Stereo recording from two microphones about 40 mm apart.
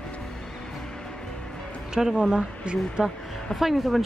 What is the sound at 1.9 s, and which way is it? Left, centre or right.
Speech, centre.